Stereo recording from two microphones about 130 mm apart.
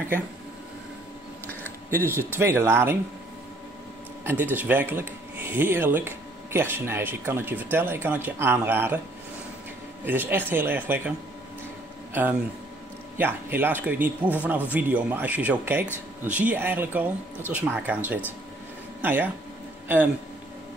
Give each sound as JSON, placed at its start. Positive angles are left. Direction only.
{"t": 1.9, "sound": "speech", "side_deg": -15}
{"t": 4.2, "sound": "speech", "side_deg": -20}
{"t": 10.0, "sound": "a man's voice", "side_deg": -15}